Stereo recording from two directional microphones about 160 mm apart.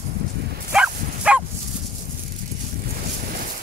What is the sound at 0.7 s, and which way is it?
Bow-wow, 5° right (ahead or behind).